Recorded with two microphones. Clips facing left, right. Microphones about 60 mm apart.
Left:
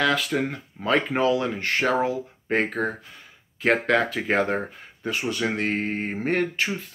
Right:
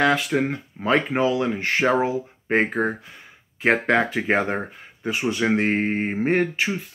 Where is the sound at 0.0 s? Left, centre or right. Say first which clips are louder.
Right 3 dB; centre.